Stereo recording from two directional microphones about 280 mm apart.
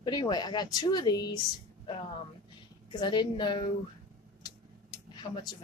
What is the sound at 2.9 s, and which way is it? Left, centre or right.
Speech, centre.